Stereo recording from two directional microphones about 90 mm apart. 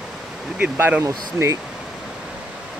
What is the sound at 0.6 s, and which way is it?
Speech, 20° right (ahead or behind).